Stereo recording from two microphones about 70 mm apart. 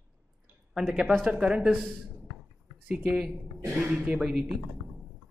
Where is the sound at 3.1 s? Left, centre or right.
Centre.